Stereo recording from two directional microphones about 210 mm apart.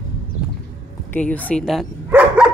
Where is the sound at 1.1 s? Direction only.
5° left (ahead or behind).